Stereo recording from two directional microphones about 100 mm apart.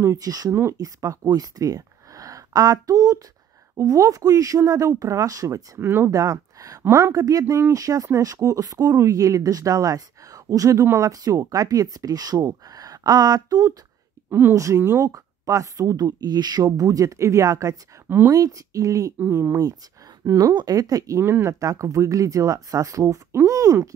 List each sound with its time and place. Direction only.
0.0 s speech: 35° right (ahead or behind)
0.5 s speech: 25° right (ahead or behind)
0.7 s speech: 35° right (ahead or behind)
14.3 s speech: 30° right (ahead or behind)
18.0 s speech: 20° right (ahead or behind)
18.3 s speech: 35° right (ahead or behind)
19.1 s speech: 20° right (ahead or behind)
20.2 s speech: 35° right (ahead or behind)